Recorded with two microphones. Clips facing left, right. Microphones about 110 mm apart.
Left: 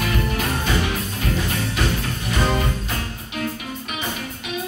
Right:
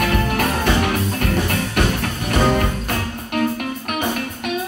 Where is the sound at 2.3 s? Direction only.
55° right (ahead or behind).